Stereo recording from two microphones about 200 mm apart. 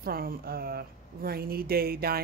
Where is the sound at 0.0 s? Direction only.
45° right (ahead or behind).